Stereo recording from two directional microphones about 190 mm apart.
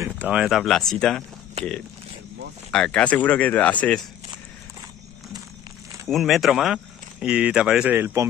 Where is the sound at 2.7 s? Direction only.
5° left (ahead or behind).